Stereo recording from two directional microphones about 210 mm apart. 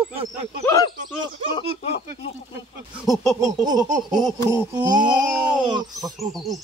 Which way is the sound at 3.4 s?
20° right (ahead or behind).